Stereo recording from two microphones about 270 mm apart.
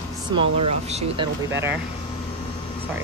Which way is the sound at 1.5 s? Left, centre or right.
Centre.